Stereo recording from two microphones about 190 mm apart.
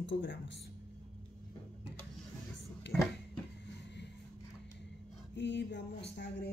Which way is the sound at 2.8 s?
70° left (ahead or behind).